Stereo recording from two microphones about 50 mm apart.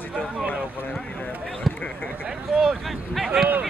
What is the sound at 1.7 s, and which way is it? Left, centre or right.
Speech, centre.